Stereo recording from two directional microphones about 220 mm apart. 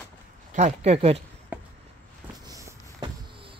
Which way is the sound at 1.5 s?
5° right (ahead or behind).